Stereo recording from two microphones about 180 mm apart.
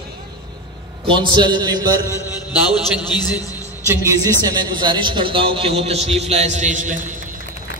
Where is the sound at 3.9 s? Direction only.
15° right (ahead or behind); by 7.1 s 45° right (ahead or behind).